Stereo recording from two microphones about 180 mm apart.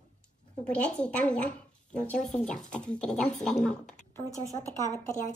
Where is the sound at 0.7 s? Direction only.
5° left (ahead or behind).